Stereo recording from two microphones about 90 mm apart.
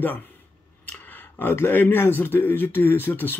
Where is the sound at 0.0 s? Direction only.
20° left (ahead or behind).